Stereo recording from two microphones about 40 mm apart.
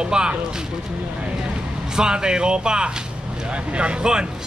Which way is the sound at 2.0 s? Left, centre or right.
Right.